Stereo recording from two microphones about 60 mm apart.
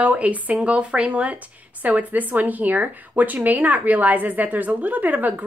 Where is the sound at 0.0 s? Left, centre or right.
Right.